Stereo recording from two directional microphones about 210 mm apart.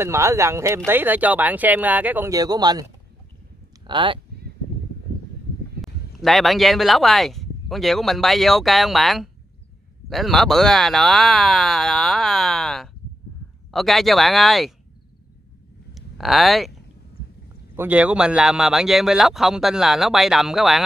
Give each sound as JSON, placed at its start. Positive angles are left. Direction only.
{"t": 0.0, "sound": "speech", "side_deg": -15}
{"t": 5.8, "sound": "speech", "side_deg": 0}
{"t": 15.9, "sound": "a sound", "side_deg": 0}
{"t": 17.7, "sound": "speech", "side_deg": -5}